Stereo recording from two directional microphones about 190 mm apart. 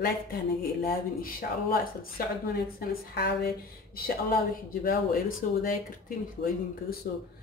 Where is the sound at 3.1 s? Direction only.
60° left (ahead or behind).